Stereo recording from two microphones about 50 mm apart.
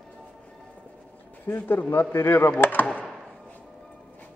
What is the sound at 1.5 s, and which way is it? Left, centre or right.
A man's voice, left.